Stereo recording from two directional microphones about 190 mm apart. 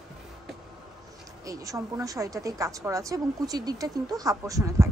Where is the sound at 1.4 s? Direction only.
15° right (ahead or behind).